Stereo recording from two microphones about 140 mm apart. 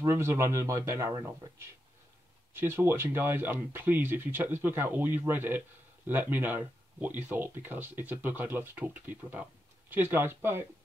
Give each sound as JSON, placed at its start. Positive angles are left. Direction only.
{"t": 0.0, "sound": "speech", "side_deg": -20}
{"t": 2.5, "sound": "speech", "side_deg": -15}